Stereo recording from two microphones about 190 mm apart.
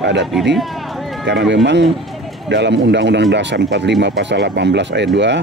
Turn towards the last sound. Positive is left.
turn(degrees=-65)  # may be behind; listen again after turning